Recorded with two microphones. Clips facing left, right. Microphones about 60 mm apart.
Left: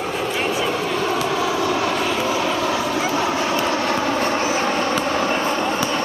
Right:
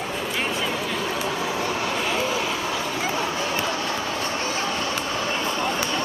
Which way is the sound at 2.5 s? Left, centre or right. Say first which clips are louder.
Left 6 dB; left.